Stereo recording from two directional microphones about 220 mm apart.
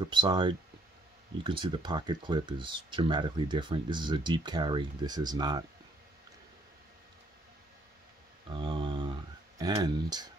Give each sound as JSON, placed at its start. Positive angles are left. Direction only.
{"t": 0.1, "sound": "speech", "side_deg": -20}
{"t": 8.5, "sound": "speech", "side_deg": -20}